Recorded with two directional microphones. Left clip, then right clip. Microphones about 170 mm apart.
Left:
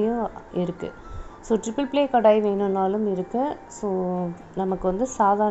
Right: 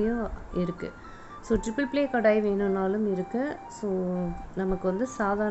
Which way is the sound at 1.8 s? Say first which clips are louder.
Left 5 dB; 35° right (ahead or behind).